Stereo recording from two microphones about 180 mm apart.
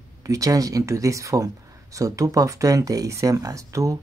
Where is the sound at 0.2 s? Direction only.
20° right (ahead or behind).